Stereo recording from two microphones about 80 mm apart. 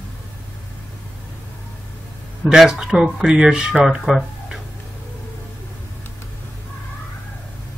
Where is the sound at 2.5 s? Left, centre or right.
Centre.